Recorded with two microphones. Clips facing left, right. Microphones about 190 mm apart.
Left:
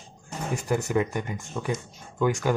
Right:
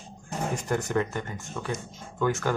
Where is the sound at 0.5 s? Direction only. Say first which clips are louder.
Left 3 dB; 10° left (ahead or behind).